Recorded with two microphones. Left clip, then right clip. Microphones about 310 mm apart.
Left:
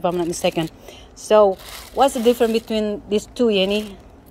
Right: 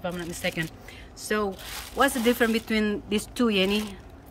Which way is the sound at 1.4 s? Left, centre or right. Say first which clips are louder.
Left 13 dB; centre.